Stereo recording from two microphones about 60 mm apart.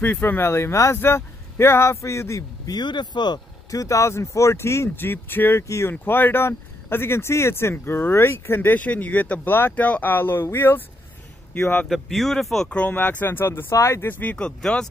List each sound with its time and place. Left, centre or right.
0.0 s speech: left
0.5 s speech: left
0.9 s speech: left
3.7 s speech: left
9.8 s speech: left
11.5 s speech: left
11.9 s speech: centre
12.6 s speech: centre
12.9 s speech: left
14.0 s speech: left
14.3 s speech: centre